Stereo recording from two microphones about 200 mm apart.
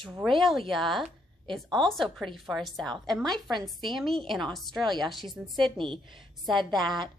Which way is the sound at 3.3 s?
20° right (ahead or behind).